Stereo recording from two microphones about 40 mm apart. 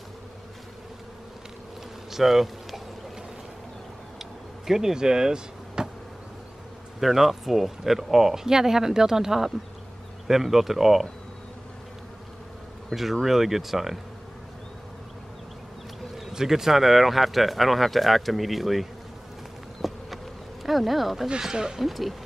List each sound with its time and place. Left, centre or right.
2.0 s insect: centre
4.2 s vehicle: centre
7.0 s speech: centre
12.9 s speech: centre
16.2 s speech: centre
19.8 s insect: centre
20.6 s speech: centre
21.4 s speech: centre
21.8 s speech: centre